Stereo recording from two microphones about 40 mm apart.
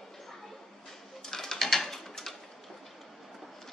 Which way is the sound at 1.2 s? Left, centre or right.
Centre.